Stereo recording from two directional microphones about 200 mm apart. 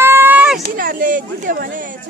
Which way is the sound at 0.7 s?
45° right (ahead or behind).